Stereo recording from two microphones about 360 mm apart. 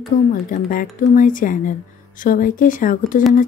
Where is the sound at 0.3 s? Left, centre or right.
Left.